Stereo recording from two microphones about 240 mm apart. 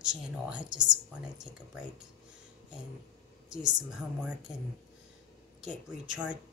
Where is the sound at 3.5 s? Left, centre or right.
Centre.